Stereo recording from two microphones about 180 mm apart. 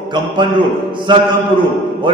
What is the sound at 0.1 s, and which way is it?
Speech, 25° right (ahead or behind).